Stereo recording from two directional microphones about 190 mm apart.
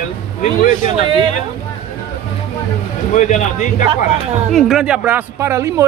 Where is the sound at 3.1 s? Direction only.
40° left (ahead or behind).